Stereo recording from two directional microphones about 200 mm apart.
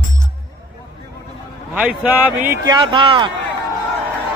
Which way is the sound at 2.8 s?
25° right (ahead or behind).